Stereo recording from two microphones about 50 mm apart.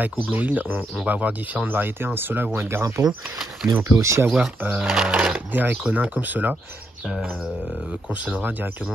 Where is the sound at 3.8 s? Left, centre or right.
Right.